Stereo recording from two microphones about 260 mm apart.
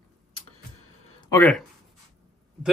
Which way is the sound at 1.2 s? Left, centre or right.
Centre.